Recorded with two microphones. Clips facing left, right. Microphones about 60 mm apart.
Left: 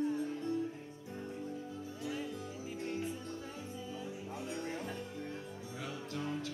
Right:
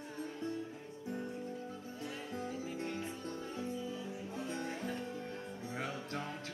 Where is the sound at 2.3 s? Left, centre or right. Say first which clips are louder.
Right 2 dB; right.